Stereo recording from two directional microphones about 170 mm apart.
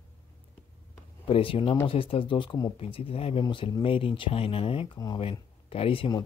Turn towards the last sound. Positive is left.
turn(degrees=30)  # may be behind; listen again after turning